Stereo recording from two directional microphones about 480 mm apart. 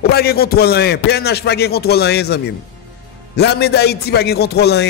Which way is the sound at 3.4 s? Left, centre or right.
Centre.